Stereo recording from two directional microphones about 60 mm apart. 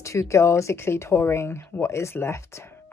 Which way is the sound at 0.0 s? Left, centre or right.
Left.